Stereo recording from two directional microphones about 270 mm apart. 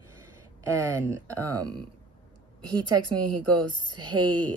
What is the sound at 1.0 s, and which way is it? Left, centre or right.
A woman's voice, centre.